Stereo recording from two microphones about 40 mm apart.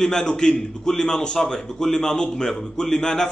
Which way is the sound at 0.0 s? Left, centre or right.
Centre.